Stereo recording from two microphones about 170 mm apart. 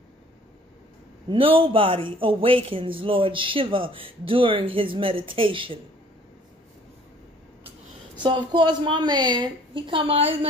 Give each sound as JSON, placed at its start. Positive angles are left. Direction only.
{"t": 1.3, "sound": "speech", "side_deg": -30}
{"t": 8.2, "sound": "a woman's voice", "side_deg": -30}